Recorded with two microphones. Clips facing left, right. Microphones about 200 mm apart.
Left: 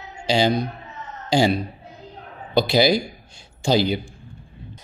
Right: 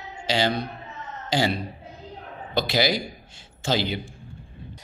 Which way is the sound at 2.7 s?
15° left (ahead or behind).